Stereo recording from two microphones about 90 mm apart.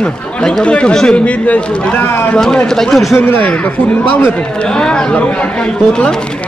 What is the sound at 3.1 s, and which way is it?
Speech, 20° left (ahead or behind).